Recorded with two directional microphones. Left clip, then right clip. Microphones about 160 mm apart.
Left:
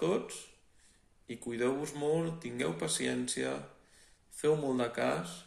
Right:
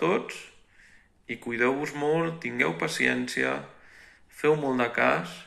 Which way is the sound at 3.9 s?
50° left (ahead or behind).